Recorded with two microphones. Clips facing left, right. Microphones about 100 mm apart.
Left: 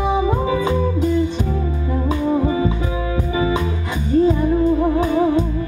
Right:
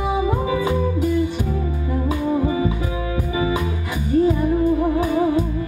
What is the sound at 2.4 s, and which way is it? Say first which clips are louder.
Music: left 2 dB; 30° left (ahead or behind).